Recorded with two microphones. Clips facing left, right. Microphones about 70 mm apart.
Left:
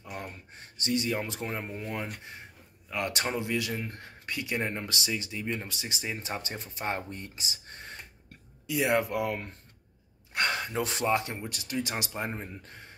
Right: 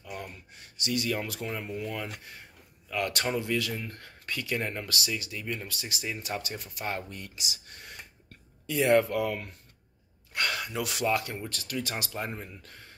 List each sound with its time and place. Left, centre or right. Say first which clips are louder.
0.0 s speech: even; left
8.6 s speech: right 3 dB; centre